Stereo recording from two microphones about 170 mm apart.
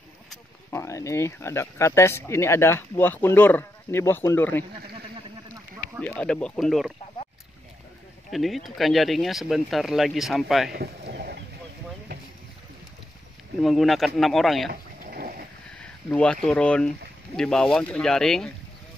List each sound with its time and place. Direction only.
0.7 s speech: 15° left (ahead or behind)
6.0 s speech: 5° left (ahead or behind)
8.3 s speech: centre (ahead or behind)
10.7 s a sound: 70° right (ahead or behind)
13.6 s speech: centre (ahead or behind)
14.7 s a sound: 60° right (ahead or behind)
16.1 s speech: 5° left (ahead or behind)